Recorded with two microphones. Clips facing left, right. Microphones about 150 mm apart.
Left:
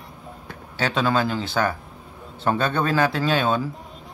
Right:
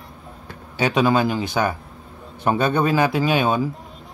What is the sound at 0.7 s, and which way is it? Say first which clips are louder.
Speech: right 4 dB; 15° right (ahead or behind).